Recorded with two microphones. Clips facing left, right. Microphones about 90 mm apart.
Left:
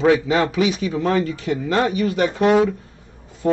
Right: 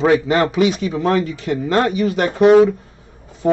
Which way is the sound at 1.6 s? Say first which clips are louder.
Right 3 dB; 60° right (ahead or behind).